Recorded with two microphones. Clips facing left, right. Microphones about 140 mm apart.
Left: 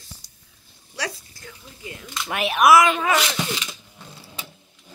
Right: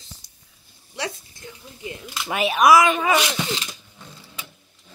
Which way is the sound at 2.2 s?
Centre (ahead or behind).